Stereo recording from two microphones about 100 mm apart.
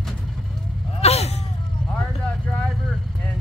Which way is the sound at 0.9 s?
90° left.